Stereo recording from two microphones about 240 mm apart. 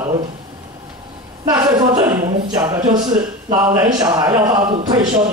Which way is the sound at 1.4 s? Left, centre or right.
Centre.